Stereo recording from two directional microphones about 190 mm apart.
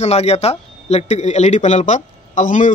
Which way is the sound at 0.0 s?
35° left (ahead or behind).